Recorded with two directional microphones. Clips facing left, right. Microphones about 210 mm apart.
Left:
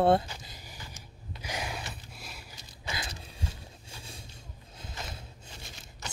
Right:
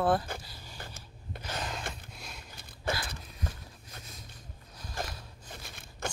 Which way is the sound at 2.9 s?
55° right (ahead or behind).